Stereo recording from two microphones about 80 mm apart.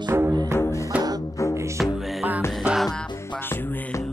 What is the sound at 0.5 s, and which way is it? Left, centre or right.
Music, left.